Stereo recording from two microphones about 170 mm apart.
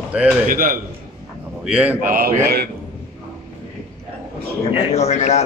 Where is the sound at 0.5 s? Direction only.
55° right (ahead or behind).